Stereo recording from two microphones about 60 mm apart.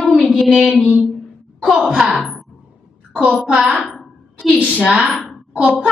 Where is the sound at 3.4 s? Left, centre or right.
Centre.